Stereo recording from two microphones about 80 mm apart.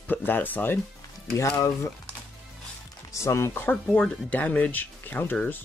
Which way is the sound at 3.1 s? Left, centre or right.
Left.